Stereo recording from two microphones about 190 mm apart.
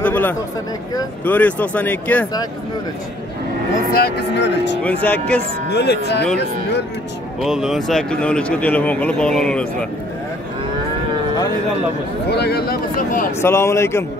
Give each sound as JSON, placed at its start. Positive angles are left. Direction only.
{"t": 0.0, "sound": "a sound", "side_deg": 10}
{"t": 1.2, "sound": "speech", "side_deg": 10}
{"t": 4.0, "sound": "speech", "side_deg": 65}
{"t": 4.8, "sound": "speech", "side_deg": 10}
{"t": 5.7, "sound": "speech", "side_deg": 60}
{"t": 7.4, "sound": "speech", "side_deg": 0}
{"t": 12.3, "sound": "speech", "side_deg": 60}
{"t": 13.4, "sound": "speech", "side_deg": 15}